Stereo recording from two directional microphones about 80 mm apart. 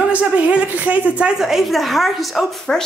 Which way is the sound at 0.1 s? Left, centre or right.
Centre.